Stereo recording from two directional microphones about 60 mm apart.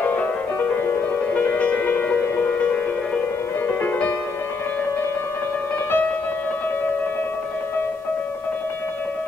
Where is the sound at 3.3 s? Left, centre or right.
Left.